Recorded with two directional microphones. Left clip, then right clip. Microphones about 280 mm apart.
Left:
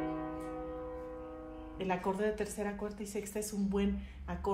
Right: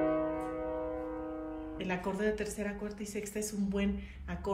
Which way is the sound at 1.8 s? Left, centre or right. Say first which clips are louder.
Left 2 dB; centre.